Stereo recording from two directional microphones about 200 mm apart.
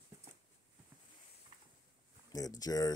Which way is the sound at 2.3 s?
20° left (ahead or behind).